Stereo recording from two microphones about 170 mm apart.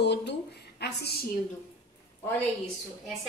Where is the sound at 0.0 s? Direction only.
80° left.